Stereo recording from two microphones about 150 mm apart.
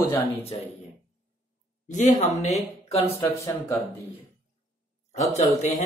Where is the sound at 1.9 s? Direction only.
55° left (ahead or behind).